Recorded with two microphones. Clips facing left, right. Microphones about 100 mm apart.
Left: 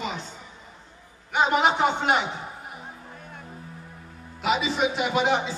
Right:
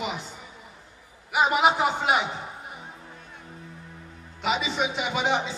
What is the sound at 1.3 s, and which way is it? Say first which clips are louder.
Speech: even; 5° right (ahead or behind).